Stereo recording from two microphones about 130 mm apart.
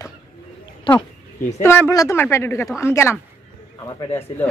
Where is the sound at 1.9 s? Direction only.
25° left (ahead or behind).